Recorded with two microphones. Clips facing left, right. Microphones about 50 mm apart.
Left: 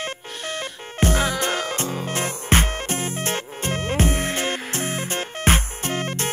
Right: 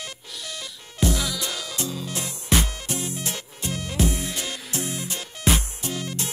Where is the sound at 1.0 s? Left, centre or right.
Left.